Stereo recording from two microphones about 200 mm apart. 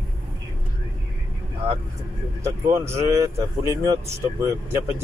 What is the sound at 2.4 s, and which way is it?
Speech, 15° right (ahead or behind).